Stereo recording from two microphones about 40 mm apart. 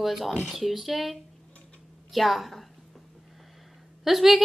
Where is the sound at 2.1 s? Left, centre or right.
Centre.